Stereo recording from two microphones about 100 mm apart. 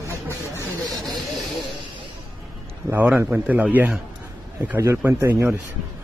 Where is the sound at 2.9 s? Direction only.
15° right (ahead or behind).